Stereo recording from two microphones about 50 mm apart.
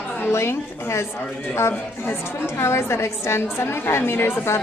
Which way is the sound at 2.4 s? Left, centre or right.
Left.